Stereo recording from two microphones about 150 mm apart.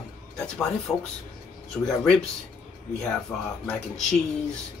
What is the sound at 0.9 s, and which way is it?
Speech, 20° left (ahead or behind).